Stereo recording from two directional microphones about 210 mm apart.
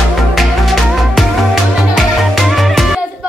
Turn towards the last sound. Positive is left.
turn(degrees=0)  # may be behind; listen again after turning